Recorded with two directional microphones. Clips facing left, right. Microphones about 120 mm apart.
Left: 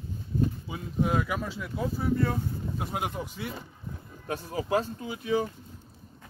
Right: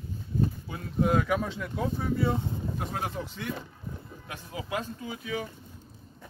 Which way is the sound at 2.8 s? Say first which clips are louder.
Left 3 dB; 10° left (ahead or behind).